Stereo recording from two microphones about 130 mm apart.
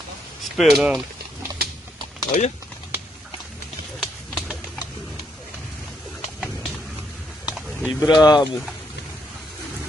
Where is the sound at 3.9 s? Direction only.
Centre (ahead or behind).